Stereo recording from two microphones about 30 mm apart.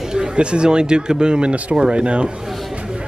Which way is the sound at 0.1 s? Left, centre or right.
Right.